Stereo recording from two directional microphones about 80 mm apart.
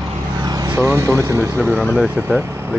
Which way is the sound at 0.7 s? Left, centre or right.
Right.